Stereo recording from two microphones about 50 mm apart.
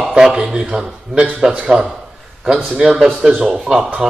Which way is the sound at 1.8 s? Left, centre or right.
Centre.